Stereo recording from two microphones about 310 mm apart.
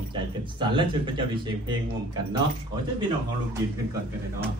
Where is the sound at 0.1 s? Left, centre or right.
Centre.